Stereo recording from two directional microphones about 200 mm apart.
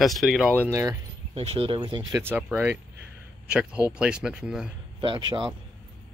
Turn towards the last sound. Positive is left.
turn(degrees=-25)  # may be behind; listen again after turning